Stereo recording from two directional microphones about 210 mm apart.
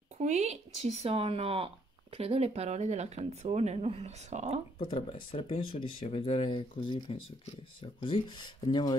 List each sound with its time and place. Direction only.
0.2 s speech: 35° right (ahead or behind)
4.7 s speech: 25° left (ahead or behind)